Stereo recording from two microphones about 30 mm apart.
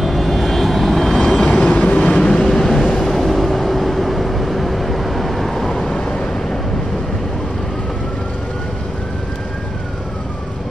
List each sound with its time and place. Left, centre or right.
0.0 s vehicle: centre
1.6 s train: left
2.0 s vehicle: left
3.0 s vehicle: centre